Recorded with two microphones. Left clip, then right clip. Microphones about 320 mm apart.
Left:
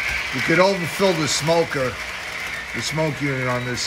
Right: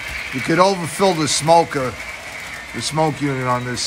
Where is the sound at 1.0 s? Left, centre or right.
Centre.